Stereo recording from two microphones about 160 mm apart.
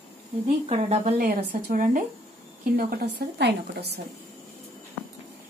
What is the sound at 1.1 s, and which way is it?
Speech, 55° right (ahead or behind).